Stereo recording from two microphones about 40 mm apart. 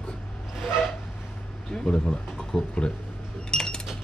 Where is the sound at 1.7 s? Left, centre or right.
Centre.